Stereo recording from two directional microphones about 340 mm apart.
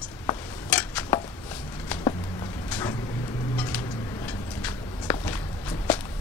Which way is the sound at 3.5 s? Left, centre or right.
Centre.